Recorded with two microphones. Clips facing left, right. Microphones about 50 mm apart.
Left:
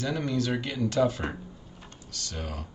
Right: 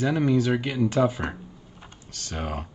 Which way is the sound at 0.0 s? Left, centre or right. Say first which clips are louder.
Right 6 dB; centre.